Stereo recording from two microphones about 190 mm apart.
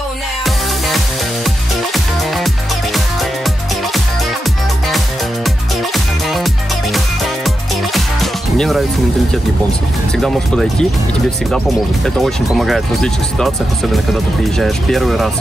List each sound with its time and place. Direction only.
0.8 s music: centre (ahead or behind)
4.8 s music: centre (ahead or behind)
10.1 s speech: centre (ahead or behind)
14.6 s speech: centre (ahead or behind)